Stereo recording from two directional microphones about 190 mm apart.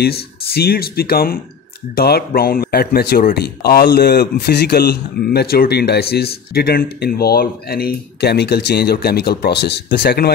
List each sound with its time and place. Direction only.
0.0 s speech: 55° left (ahead or behind)